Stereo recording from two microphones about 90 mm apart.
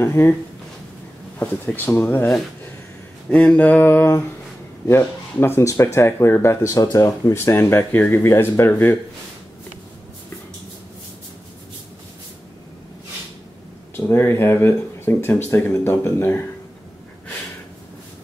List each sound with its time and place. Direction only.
0.0 s speech: 30° left (ahead or behind)
1.4 s speech: 20° left (ahead or behind)
3.3 s a sound: 15° left (ahead or behind)
4.8 s speech: 25° left (ahead or behind)
13.9 s speech: 30° left (ahead or behind)